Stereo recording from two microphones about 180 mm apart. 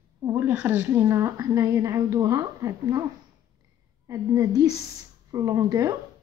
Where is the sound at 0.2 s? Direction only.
10° right (ahead or behind).